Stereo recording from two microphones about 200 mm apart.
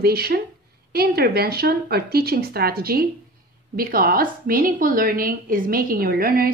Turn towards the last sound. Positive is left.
turn(degrees=-45)  # may be behind; listen again after turning